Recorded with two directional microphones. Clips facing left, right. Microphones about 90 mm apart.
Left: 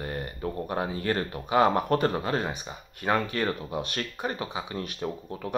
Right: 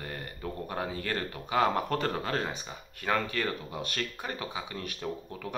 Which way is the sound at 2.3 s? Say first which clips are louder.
Left 3 dB; 15° left (ahead or behind).